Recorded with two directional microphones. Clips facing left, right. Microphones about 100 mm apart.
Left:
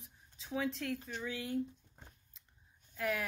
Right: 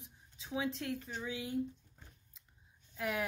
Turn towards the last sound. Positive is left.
turn(degrees=-20)  # may be behind; listen again after turning